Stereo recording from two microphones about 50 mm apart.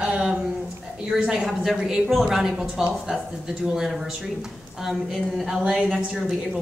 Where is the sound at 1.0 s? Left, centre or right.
Centre.